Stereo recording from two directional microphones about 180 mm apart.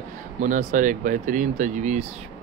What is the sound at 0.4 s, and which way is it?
Speech, 45° right (ahead or behind).